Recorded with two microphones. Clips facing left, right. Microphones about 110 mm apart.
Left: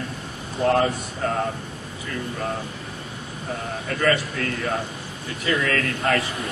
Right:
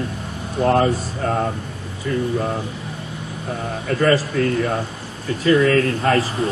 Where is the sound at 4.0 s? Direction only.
30° right (ahead or behind).